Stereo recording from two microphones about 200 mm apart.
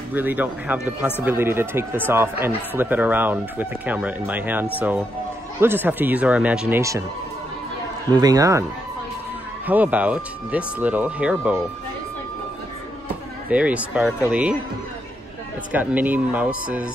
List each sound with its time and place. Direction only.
0.1 s speech: 10° right (ahead or behind)
8.1 s speech: 20° right (ahead or behind)
9.7 s speech: 10° right (ahead or behind)
13.5 s speech: 5° right (ahead or behind)
15.7 s speech: 10° right (ahead or behind)